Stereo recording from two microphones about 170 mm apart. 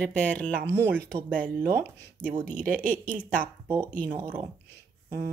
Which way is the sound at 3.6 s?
30° right (ahead or behind).